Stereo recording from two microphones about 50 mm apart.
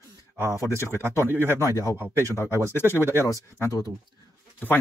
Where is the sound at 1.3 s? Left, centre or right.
Right.